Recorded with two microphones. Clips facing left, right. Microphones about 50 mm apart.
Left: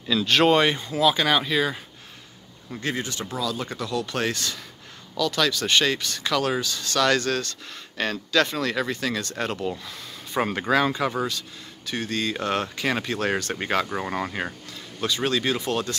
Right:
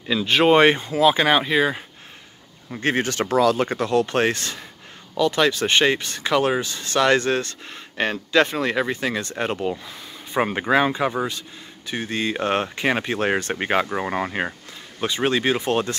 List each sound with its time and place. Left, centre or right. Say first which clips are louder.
0.1 s speech: right 2 dB; centre
0.6 s speech: right 5 dB; right
2.8 s speech: right 7 dB; right